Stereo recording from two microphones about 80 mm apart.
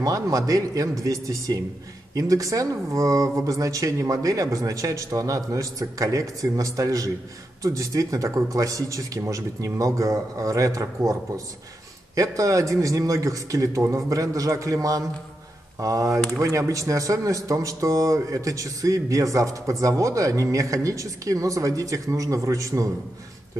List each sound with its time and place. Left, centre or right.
0.0 s speech: right
12.2 s speech: right